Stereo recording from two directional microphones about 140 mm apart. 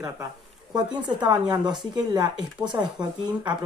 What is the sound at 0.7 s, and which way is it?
Speech, 30° right (ahead or behind).